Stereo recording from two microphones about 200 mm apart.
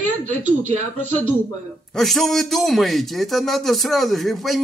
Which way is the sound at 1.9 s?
Centre (ahead or behind).